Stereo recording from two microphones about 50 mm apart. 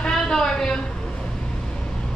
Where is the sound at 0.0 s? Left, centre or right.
Centre.